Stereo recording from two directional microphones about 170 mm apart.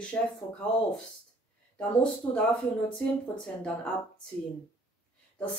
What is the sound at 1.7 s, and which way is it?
Speech, 10° left (ahead or behind).